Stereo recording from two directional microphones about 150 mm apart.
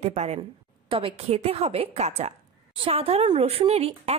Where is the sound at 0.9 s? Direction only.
40° right (ahead or behind).